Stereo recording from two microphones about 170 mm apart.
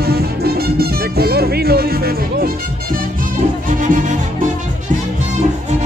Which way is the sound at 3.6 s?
50° right (ahead or behind).